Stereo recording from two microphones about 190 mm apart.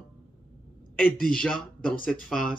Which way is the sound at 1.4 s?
5° left (ahead or behind).